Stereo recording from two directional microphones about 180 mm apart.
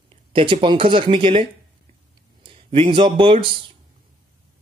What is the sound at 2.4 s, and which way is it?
Speech, 30° right (ahead or behind).